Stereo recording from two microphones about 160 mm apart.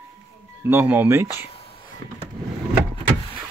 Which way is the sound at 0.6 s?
15° right (ahead or behind).